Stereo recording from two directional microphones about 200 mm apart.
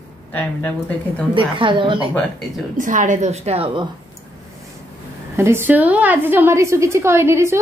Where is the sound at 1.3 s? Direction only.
25° right (ahead or behind).